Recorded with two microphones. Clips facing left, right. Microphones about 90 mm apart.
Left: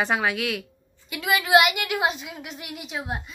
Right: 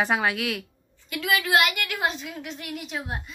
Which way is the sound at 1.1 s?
15° left (ahead or behind).